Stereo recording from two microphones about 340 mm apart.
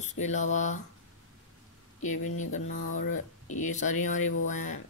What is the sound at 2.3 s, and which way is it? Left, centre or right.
Speech, left.